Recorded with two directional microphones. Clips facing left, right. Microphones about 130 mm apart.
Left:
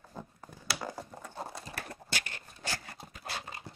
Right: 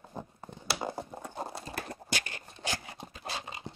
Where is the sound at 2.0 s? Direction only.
15° right (ahead or behind).